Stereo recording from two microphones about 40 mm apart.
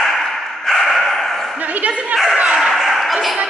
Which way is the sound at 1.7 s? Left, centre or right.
Right.